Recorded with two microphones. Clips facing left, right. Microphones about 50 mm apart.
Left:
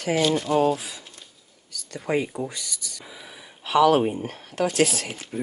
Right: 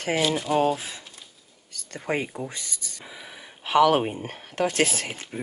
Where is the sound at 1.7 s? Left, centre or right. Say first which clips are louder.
Left 2 dB; right.